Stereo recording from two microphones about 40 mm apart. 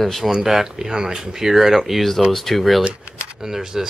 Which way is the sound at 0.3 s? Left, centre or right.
Centre.